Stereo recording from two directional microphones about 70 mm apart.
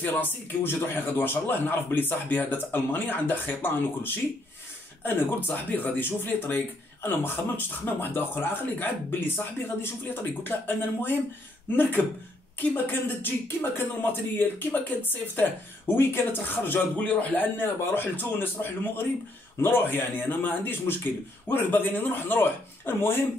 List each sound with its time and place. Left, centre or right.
0.0 s speech: left